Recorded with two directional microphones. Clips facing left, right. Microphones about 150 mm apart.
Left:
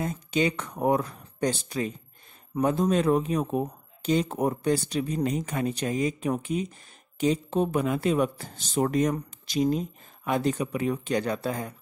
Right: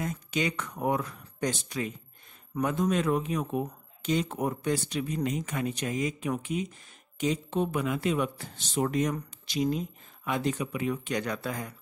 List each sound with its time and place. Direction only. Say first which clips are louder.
0.0 s speech: left 4 dB; 30° left (ahead or behind)